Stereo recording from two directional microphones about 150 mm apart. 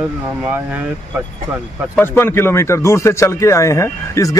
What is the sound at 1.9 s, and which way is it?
Speech, 15° left (ahead or behind).